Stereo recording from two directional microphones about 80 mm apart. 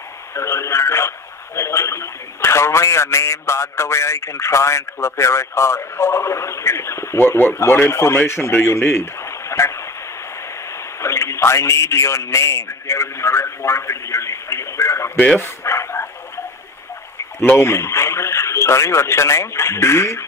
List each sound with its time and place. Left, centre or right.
0.3 s a man's voice: left
9.5 s a sound: left
11.0 s a man's voice: left
15.1 s speech: centre
15.6 s dog: left
17.6 s a man's voice: left